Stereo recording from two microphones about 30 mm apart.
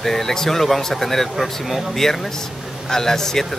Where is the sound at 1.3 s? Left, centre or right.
Centre.